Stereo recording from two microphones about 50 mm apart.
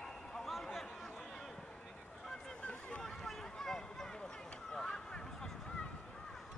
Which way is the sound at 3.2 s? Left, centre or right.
Centre.